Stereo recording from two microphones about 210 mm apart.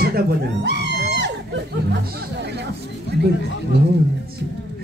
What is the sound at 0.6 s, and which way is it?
Music, 55° right (ahead or behind).